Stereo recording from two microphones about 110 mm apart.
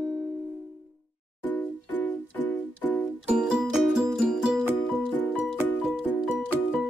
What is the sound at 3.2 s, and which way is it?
Music, 10° right (ahead or behind).